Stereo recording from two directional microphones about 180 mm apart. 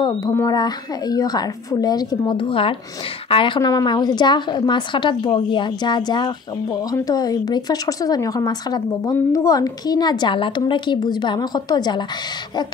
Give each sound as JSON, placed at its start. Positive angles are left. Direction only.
{"t": 0.0, "sound": "a woman's voice", "side_deg": 20}